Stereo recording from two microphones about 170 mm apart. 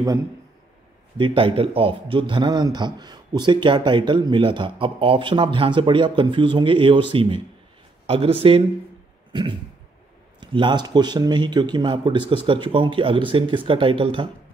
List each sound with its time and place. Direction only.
1.1 s a man's voice: 30° right (ahead or behind)
9.3 s a sound: 30° right (ahead or behind)
10.4 s a man's voice: 25° right (ahead or behind)